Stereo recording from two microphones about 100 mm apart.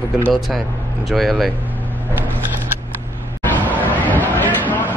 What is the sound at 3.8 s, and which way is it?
Chatter, 15° left (ahead or behind).